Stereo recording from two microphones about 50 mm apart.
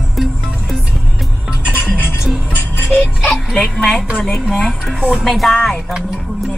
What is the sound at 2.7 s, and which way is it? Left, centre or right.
Music, left.